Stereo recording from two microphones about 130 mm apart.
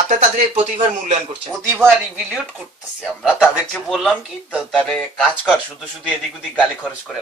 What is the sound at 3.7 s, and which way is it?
Speech, centre (ahead or behind).